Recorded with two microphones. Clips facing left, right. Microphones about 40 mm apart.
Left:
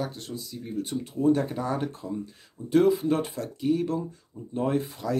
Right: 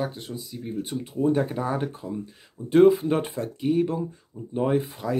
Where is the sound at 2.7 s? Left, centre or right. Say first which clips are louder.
Right 4 dB; right.